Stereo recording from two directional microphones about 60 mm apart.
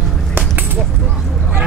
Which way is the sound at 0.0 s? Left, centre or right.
Centre.